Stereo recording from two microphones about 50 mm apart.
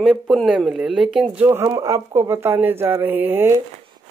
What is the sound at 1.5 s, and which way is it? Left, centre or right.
Speech, right.